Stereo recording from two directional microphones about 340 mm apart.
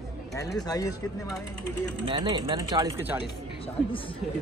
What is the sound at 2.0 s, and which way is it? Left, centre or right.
Speech, centre.